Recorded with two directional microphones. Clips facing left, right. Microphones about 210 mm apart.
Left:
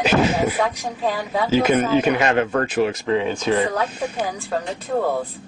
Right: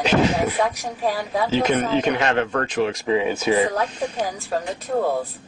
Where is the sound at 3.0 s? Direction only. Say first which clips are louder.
Even; 5° right (ahead or behind).